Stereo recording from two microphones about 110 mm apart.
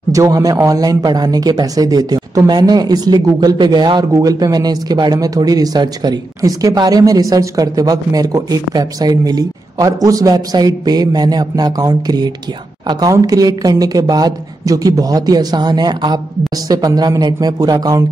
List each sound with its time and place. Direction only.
0.1 s speech: 30° right (ahead or behind)